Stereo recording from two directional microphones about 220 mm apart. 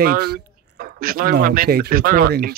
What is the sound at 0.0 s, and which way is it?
Speech, 45° right (ahead or behind).